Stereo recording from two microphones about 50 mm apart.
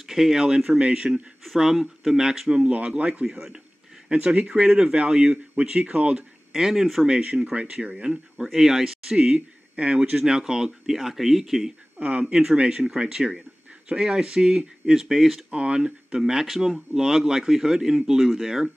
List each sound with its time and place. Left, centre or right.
0.0 s speech: centre
1.4 s speech: centre
2.5 s speech: right
3.3 s speech: centre
4.1 s speech: right; by 7.1 s centre
7.1 s speech: centre
10.1 s speech: centre
12.0 s speech: right; by 15.4 s centre
15.5 s speech: right